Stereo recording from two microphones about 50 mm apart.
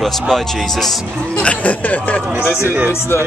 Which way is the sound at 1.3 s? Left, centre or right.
Left.